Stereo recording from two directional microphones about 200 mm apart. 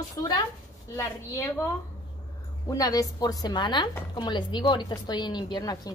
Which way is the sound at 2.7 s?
15° left (ahead or behind).